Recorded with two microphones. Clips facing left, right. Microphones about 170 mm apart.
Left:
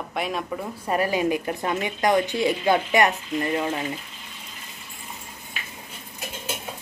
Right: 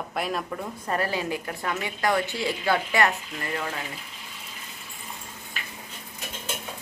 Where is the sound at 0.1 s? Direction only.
Centre (ahead or behind).